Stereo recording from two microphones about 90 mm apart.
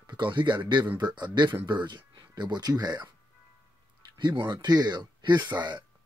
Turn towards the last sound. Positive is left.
turn(degrees=-55)  # may be behind; listen again after turning